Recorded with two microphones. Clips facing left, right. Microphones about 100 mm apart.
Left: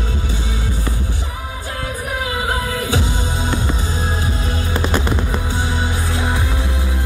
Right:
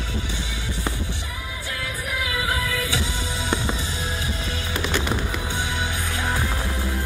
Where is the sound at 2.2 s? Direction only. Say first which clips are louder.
Left 4 dB; 35° left (ahead or behind).